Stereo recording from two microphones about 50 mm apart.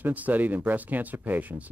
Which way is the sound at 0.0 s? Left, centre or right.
Right.